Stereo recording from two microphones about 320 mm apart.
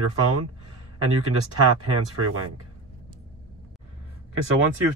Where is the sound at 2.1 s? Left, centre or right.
Right.